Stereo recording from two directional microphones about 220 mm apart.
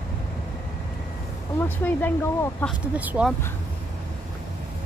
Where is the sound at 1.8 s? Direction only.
10° left (ahead or behind).